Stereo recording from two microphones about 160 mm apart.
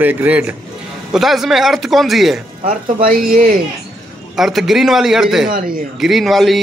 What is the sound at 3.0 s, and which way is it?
Speech, 65° right (ahead or behind).